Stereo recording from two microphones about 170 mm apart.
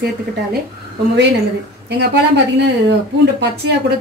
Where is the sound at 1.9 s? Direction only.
75° right (ahead or behind).